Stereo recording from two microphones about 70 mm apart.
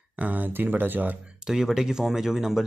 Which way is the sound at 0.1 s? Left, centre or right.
Right.